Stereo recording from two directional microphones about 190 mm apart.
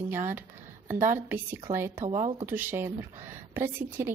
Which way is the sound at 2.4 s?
10° right (ahead or behind).